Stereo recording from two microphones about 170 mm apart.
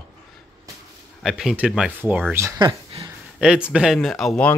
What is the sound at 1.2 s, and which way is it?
Speech, centre (ahead or behind).